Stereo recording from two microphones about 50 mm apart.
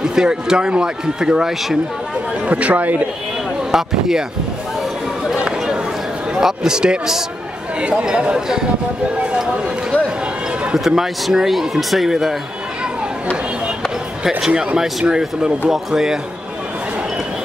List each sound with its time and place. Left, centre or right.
0.0 s speech: centre
2.4 s speech: right
3.7 s speech: centre
5.2 s a sound: centre
6.4 s speech: centre
10.8 s speech: centre
14.5 s speech: right
14.8 s speech: centre